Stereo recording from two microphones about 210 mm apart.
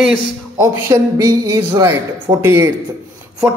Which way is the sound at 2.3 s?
10° right (ahead or behind).